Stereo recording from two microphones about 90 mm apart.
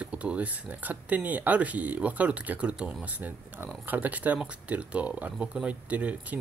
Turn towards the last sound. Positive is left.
turn(degrees=-15)  # may be behind; listen again after turning